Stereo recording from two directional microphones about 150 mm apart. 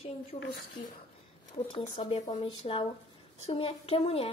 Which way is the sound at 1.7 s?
40° left (ahead or behind).